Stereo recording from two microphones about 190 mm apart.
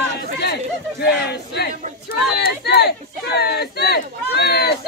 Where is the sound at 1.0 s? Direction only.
60° left (ahead or behind).